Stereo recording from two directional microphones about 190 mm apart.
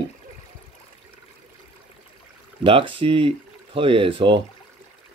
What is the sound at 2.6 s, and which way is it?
Speech, 25° right (ahead or behind).